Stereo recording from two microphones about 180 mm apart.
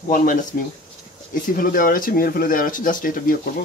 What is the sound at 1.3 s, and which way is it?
Speech, 50° left (ahead or behind).